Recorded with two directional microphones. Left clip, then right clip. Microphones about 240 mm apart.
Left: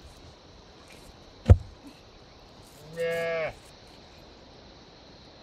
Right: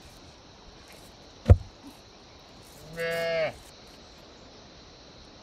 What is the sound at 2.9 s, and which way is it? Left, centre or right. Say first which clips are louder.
Moo: even; right.